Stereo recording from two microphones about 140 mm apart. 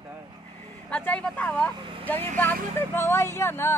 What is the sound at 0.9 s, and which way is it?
Speech, 10° left (ahead or behind).